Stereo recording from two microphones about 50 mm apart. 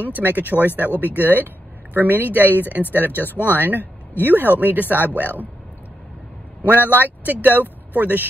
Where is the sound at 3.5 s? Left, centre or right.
Right.